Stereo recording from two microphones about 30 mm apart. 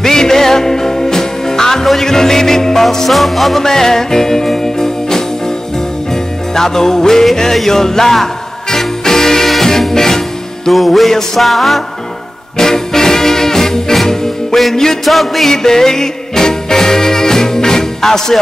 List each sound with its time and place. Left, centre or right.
0.0 s music: centre
3.1 s music: centre
3.6 s music: centre
6.5 s music: centre
10.7 s music: centre
12.5 s music: centre
15.0 s music: centre
15.4 s music: centre